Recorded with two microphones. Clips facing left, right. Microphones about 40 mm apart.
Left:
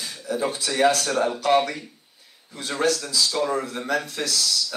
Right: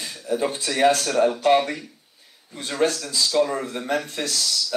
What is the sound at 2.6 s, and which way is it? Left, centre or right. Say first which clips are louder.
A man's voice: right 1 dB; right.